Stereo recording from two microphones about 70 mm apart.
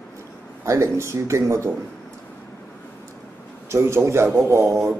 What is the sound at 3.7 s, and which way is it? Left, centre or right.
A man's voice, right.